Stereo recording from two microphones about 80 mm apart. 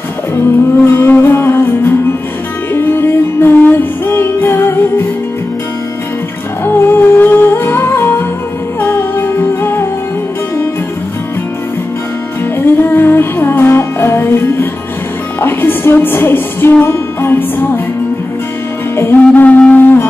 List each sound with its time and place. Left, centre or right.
0.8 s music: left
6.6 s music: left
12.5 s music: left
18.9 s music: left
19.4 s music: centre